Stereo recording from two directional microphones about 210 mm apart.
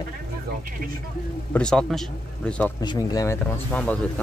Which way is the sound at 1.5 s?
5° left (ahead or behind).